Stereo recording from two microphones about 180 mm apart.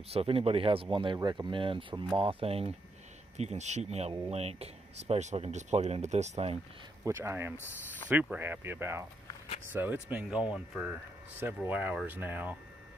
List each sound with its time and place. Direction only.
0.1 s speech: 35° right (ahead or behind)
7.1 s speech: 15° right (ahead or behind)